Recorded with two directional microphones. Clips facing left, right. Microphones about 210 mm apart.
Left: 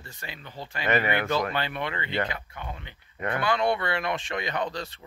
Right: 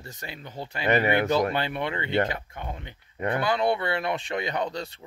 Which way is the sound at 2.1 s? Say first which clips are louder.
Right 4 dB; 50° right (ahead or behind).